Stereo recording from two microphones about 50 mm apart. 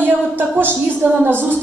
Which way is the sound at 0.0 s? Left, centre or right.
Right.